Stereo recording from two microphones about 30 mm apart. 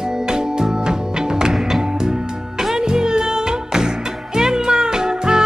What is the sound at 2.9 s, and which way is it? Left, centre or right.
Music, right.